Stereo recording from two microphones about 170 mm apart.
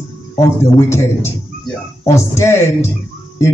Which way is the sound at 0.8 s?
15° left (ahead or behind).